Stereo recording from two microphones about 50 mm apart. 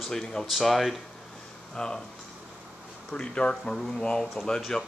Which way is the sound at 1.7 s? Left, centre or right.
Centre.